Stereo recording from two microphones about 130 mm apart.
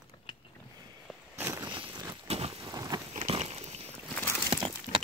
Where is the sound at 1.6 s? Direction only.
35° right (ahead or behind).